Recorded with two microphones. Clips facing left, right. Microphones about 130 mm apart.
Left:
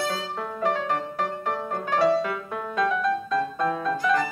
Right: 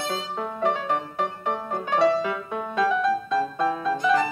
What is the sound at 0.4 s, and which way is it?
Music, centre (ahead or behind).